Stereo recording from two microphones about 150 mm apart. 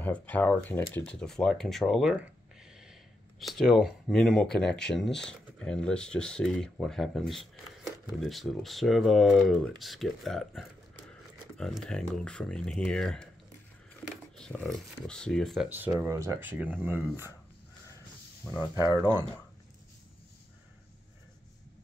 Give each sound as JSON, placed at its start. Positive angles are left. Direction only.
{"t": 0.0, "sound": "speech", "side_deg": 10}
{"t": 16.1, "sound": "speech", "side_deg": -20}
{"t": 18.4, "sound": "speech", "side_deg": 5}
{"t": 18.8, "sound": "speech", "side_deg": 25}